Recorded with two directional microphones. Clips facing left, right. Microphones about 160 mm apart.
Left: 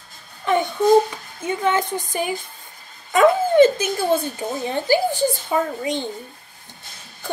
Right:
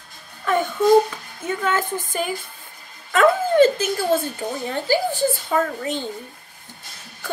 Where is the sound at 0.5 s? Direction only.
20° left (ahead or behind).